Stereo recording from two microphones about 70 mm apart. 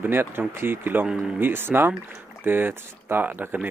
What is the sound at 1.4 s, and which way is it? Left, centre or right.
Speech, right.